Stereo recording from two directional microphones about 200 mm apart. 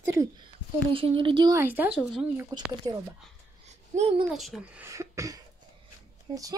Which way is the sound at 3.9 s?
35° right (ahead or behind).